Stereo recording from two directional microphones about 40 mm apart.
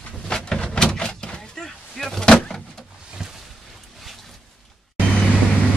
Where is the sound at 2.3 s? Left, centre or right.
Centre.